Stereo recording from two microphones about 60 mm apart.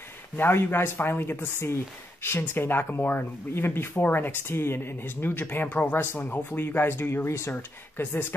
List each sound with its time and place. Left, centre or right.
0.4 s speech: left
7.2 s speech: left
8.0 s speech: left